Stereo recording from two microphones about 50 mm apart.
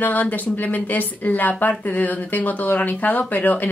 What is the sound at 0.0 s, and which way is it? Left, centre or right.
Speech, left.